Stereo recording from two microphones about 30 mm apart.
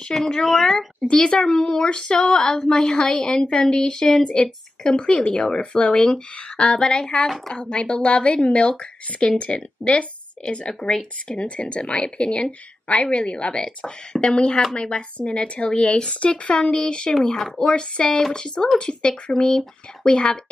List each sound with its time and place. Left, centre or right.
0.1 s a woman's voice: centre
1.0 s speech: left
2.0 s speech: left
2.3 s speech: centre
2.9 s speech: left
3.7 s speech: left
10.7 s speech: left
17.1 s speech: left
17.6 s speech: left
20.1 s speech: left